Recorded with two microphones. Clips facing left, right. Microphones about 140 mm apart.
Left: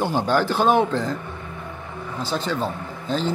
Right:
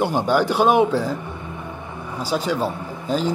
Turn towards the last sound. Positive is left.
turn(degrees=-10)  # may be behind; listen again after turning